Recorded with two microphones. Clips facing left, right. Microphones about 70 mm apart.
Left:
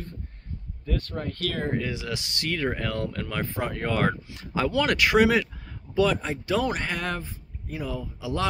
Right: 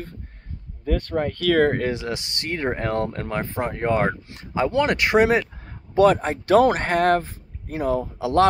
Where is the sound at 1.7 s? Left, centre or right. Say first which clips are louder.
Right 5 dB; right.